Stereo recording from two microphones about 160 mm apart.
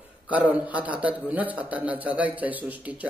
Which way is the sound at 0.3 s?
10° right (ahead or behind).